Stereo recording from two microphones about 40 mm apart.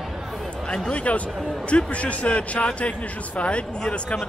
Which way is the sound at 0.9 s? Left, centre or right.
Left.